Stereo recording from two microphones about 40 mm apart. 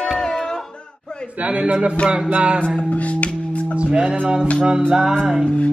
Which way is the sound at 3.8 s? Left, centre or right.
Right.